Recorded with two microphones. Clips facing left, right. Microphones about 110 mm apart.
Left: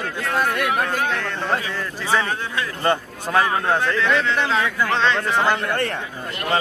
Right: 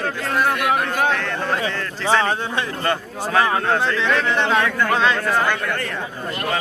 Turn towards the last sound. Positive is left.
turn(degrees=20)  # may be behind; listen again after turning